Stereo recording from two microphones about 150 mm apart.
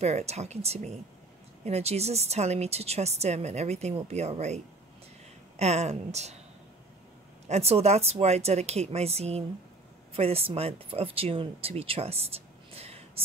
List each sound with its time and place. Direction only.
0.0 s a woman's voice: 45° right (ahead or behind)
5.6 s a woman's voice: 45° right (ahead or behind)
7.4 s a woman's voice: 45° right (ahead or behind)